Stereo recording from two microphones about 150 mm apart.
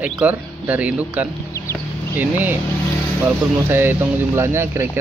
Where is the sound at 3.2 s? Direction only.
15° right (ahead or behind).